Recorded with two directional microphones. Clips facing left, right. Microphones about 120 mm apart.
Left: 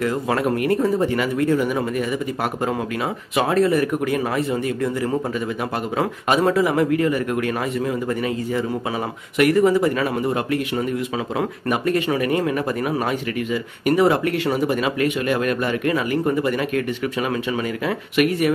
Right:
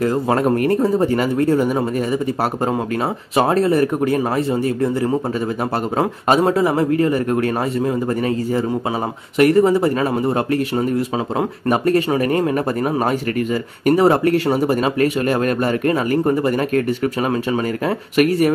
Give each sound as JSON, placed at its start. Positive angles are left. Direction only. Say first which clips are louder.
{"t": 0.0, "sound": "speech", "louder": "right 4 dB", "side_deg": -35}
{"t": 3.3, "sound": "speech", "louder": "right 3 dB", "side_deg": -35}